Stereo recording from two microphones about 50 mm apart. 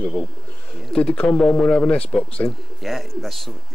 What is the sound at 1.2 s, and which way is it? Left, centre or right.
Speech, left.